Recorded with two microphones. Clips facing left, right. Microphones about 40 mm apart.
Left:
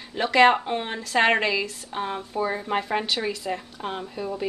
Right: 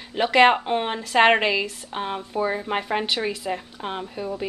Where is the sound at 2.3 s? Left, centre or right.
Centre.